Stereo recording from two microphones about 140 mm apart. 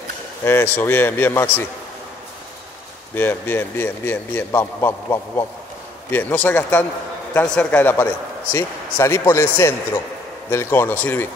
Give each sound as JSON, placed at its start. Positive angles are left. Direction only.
{"t": 0.4, "sound": "a man's voice", "side_deg": 15}
{"t": 3.2, "sound": "a man's voice", "side_deg": 15}